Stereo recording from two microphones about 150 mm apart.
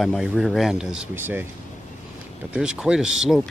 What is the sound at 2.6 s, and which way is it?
Speech, 5° right (ahead or behind).